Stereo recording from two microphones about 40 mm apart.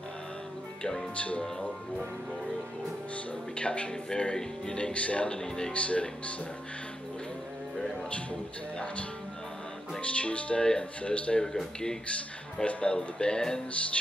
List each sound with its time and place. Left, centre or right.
1.1 s music: left
3.5 s speech: left
4.9 s music: left
8.1 s music: left
10.0 s music: left
10.8 s speech: left
11.4 s speech: centre
12.6 s speech: left